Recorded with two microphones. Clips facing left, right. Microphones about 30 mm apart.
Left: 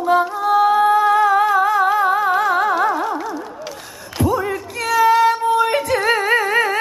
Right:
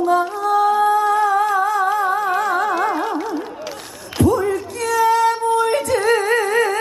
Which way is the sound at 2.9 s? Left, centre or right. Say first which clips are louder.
Left 1 dB; centre.